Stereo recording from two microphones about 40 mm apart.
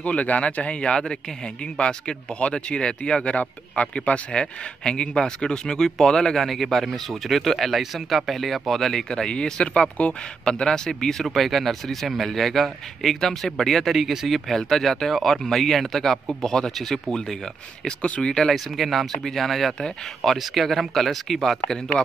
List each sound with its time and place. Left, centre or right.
0.0 s speech: left
4.3 s speech: left
6.4 s speech: centre
9.1 s speech: left
11.2 s speech: centre
18.5 s speech: centre